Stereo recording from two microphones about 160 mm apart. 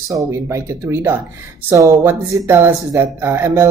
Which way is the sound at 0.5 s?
15° right (ahead or behind).